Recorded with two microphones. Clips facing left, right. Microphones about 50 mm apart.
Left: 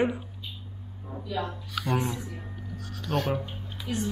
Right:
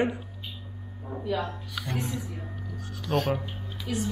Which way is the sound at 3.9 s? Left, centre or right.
Centre.